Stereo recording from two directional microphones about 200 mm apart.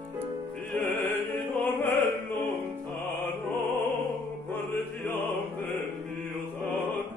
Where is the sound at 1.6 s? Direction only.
10° left (ahead or behind).